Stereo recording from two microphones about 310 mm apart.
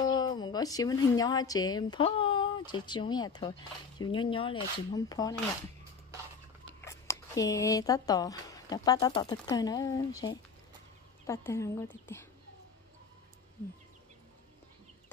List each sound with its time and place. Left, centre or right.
0.0 s a woman's voice: centre
6.8 s speech: centre